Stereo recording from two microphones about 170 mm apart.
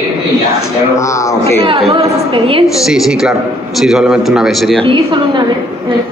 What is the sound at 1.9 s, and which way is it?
Speech, 35° right (ahead or behind).